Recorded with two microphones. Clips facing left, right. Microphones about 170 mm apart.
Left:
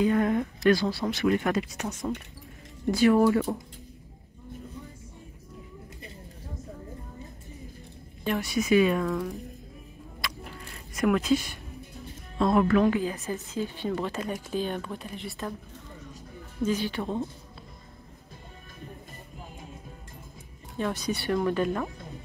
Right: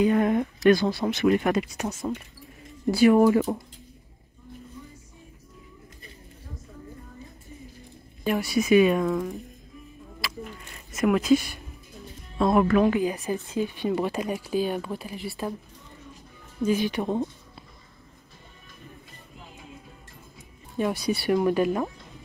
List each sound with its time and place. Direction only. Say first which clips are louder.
0.0 s speech: right 2 dB; 15° right (ahead or behind)
8.2 s speech: right 3 dB; 10° right (ahead or behind)
10.2 s a sound: even; 5° right (ahead or behind)
11.0 s speech: right 3 dB; 5° right (ahead or behind)
16.6 s speech: right 4 dB; 15° right (ahead or behind)
20.7 s speech: right 4 dB; 10° right (ahead or behind)